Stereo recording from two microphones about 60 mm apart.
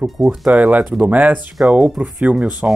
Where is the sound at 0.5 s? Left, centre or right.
Right.